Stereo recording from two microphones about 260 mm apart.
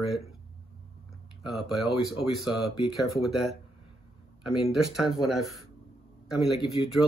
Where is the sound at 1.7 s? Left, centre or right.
Left.